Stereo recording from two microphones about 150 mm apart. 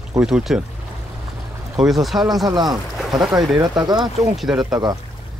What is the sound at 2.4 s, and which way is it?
Speech, 30° right (ahead or behind).